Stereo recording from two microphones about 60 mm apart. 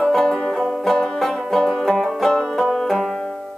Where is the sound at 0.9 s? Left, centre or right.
Centre.